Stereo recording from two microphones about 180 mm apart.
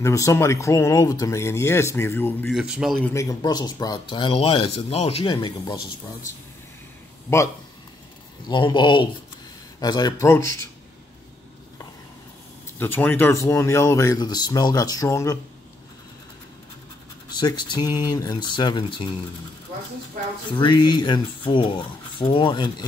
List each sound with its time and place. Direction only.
0.0 s speech: 15° left (ahead or behind)
2.5 s a man's voice: 5° right (ahead or behind)
3.1 s speech: 20° left (ahead or behind)
7.3 s speech: 15° left (ahead or behind)
8.5 s speech: 25° left (ahead or behind)
12.7 s speech: 10° left (ahead or behind)
17.3 s speech: 25° left (ahead or behind)
20.5 s speech: 25° left (ahead or behind)